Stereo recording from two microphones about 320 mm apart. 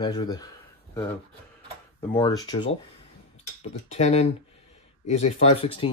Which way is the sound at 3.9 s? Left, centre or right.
Centre.